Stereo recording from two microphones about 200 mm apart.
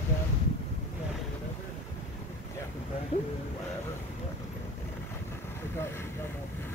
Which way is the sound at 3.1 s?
35° left (ahead or behind).